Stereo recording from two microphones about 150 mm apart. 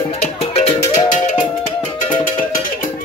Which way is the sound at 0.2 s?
45° left (ahead or behind).